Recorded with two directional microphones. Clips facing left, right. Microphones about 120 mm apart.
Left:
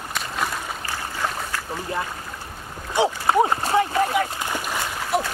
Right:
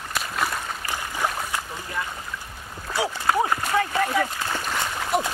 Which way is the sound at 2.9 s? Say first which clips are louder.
Left 4 dB; 20° left (ahead or behind).